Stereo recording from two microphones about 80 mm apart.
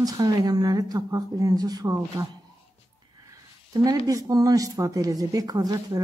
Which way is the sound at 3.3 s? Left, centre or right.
Right.